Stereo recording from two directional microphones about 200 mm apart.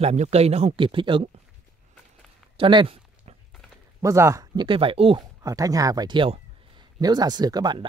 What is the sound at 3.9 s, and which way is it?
Speech, 15° right (ahead or behind).